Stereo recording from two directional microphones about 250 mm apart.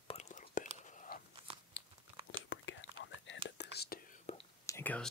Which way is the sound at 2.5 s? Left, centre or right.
Left.